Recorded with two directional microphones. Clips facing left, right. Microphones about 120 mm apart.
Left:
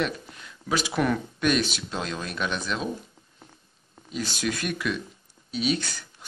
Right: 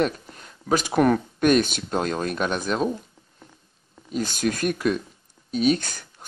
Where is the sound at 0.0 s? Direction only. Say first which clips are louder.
Right 5 dB; 45° right (ahead or behind).